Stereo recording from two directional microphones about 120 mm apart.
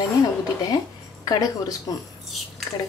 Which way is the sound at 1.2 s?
30° left (ahead or behind).